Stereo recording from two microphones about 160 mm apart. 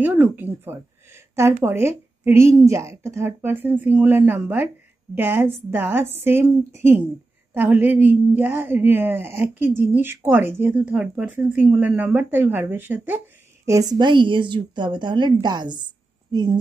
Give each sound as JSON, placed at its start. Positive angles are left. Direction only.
{"t": 0.0, "sound": "a woman's voice", "side_deg": -10}